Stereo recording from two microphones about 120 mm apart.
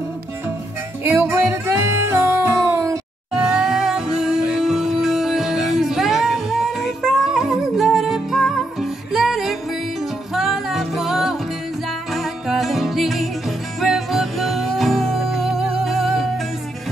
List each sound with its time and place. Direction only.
1.0 s music: 20° right (ahead or behind)
3.3 s music: 5° right (ahead or behind)